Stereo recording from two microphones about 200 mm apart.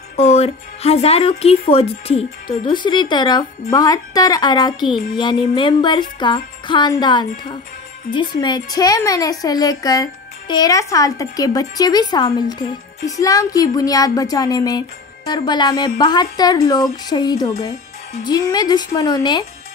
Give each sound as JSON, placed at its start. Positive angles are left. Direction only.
{"t": 0.1, "sound": "speech", "side_deg": 30}
{"t": 2.6, "sound": "music", "side_deg": 25}